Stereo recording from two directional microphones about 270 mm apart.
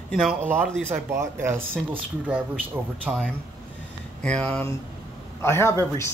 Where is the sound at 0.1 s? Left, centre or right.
Centre.